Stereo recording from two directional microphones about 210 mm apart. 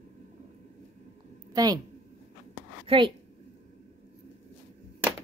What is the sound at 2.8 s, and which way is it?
Speech, 25° right (ahead or behind).